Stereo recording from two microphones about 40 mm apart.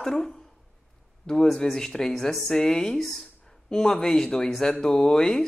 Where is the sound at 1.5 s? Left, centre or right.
Centre.